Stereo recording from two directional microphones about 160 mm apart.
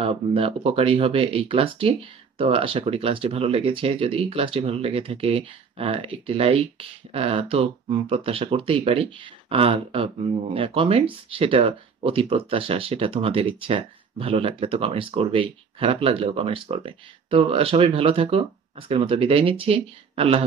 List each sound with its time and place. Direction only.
0.0 s speech: 35° right (ahead or behind)